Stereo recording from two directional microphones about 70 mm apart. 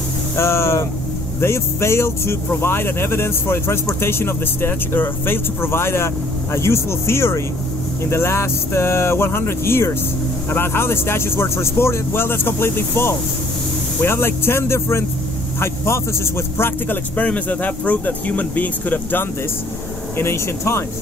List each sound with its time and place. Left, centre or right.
0.4 s speech: left
17.2 s speech: left
20.2 s speech: left